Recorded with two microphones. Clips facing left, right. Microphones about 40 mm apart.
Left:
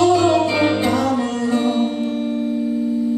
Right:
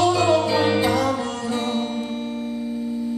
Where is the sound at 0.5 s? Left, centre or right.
Centre.